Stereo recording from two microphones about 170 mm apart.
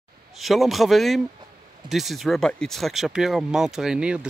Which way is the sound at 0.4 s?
Centre (ahead or behind).